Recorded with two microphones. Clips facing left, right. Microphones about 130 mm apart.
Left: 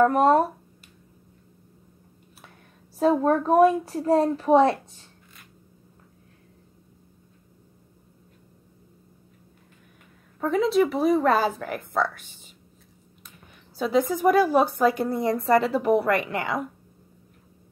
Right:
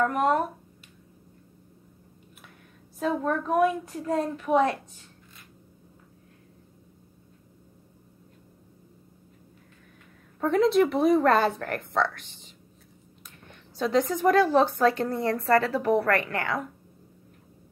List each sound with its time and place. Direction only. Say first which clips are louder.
0.0 s speech: left 6 dB; 35° left (ahead or behind)
3.0 s speech: left 6 dB; 35° left (ahead or behind)
10.4 s a woman's voice: even; centre (ahead or behind)